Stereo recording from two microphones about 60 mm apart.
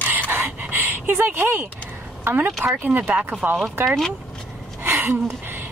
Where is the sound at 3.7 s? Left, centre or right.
Right.